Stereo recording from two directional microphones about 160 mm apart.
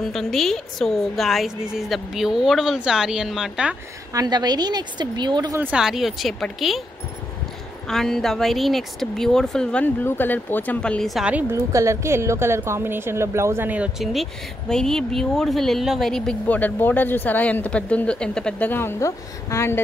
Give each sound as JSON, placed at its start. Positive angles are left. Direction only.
{"t": 0.0, "sound": "a woman's voice", "side_deg": 5}
{"t": 4.1, "sound": "a woman's voice", "side_deg": -25}
{"t": 5.6, "sound": "a woman's voice", "side_deg": -5}
{"t": 7.9, "sound": "a woman's voice", "side_deg": 0}
{"t": 11.5, "sound": "a woman's voice", "side_deg": -20}